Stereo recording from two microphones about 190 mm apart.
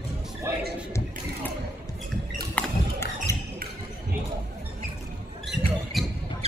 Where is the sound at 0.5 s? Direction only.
15° right (ahead or behind).